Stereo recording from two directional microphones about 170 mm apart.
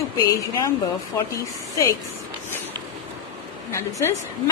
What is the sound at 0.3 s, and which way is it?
Speech, 20° left (ahead or behind).